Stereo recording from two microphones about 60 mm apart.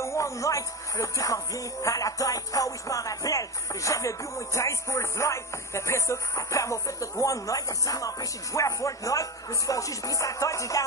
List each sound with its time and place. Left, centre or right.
0.0 s speech: left